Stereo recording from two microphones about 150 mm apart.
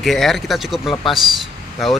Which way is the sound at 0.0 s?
Centre (ahead or behind).